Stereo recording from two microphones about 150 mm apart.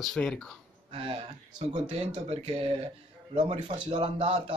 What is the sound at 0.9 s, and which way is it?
Speech, 40° right (ahead or behind).